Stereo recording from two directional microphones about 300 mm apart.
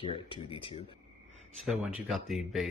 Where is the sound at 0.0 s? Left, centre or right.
Centre.